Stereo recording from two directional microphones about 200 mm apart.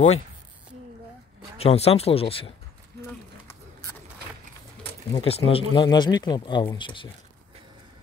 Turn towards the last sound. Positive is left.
turn(degrees=25)  # may be behind; listen again after turning